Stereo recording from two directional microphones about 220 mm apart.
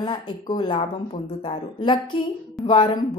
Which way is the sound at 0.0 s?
20° left (ahead or behind).